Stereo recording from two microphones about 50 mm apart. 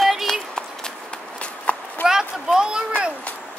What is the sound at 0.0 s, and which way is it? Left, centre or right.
Run, centre.